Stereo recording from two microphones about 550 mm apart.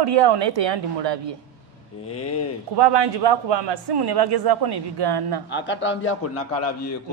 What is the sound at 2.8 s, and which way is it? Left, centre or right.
A man's voice, right.